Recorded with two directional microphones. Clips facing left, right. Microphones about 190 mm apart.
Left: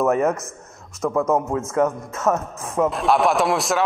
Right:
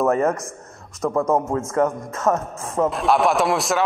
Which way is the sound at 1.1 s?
15° right (ahead or behind).